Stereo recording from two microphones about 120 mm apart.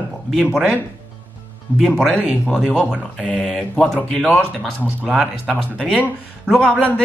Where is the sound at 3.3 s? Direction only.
5° left (ahead or behind).